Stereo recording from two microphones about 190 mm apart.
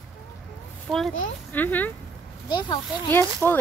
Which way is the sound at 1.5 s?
10° left (ahead or behind).